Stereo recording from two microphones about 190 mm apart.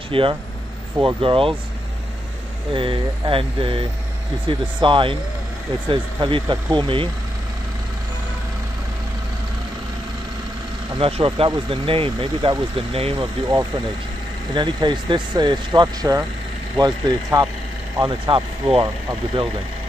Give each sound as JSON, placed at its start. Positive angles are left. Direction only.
{"t": 0.1, "sound": "speech", "side_deg": -25}
{"t": 2.7, "sound": "speech", "side_deg": -25}
{"t": 11.0, "sound": "speech", "side_deg": -30}